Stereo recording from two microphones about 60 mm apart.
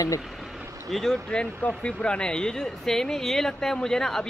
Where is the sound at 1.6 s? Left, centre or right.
Left.